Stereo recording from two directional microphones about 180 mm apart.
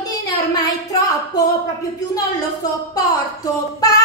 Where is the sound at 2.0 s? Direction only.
20° left (ahead or behind).